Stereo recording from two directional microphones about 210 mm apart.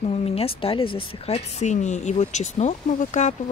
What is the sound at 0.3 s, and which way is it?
Speech, 25° left (ahead or behind).